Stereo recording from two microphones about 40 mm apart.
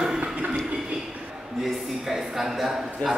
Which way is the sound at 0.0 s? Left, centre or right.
Centre.